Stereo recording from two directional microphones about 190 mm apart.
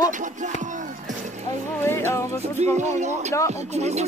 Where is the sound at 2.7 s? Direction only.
35° right (ahead or behind).